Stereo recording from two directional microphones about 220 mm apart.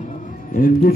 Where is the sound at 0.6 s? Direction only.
45° left (ahead or behind).